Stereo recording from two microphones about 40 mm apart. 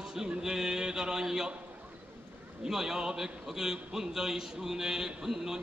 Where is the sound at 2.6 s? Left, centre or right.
Centre.